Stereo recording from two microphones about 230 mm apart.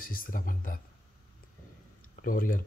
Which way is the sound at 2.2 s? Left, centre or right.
Left.